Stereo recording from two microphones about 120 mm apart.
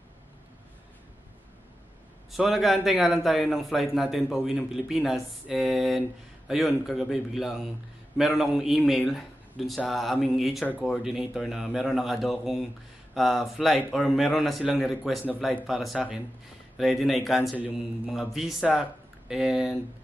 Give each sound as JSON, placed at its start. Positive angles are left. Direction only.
{"t": 2.3, "sound": "a man's voice", "side_deg": 0}